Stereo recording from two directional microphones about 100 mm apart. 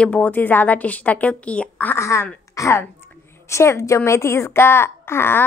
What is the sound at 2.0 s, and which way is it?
A woman's voice, 30° left (ahead or behind).